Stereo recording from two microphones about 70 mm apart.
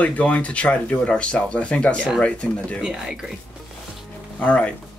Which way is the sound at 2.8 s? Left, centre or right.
Centre.